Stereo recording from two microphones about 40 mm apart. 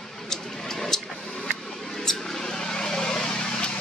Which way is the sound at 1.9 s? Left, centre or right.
Centre.